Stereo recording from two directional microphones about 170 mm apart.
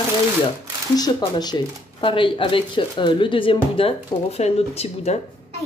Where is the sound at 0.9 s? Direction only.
25° left (ahead or behind).